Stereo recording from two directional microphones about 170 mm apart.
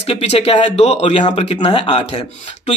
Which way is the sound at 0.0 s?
35° left (ahead or behind).